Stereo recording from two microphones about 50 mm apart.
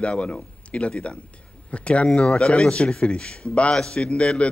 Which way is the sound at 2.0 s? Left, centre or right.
Centre.